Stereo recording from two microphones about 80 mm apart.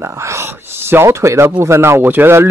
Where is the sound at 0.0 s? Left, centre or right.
Right.